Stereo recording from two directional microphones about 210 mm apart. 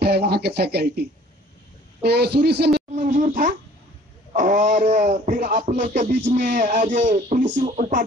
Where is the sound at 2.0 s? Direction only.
50° right (ahead or behind).